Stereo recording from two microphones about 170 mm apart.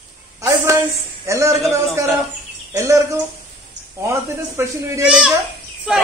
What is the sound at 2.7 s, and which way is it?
Bird, 15° right (ahead or behind).